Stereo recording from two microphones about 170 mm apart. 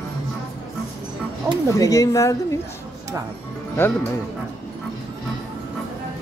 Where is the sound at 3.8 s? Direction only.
15° left (ahead or behind).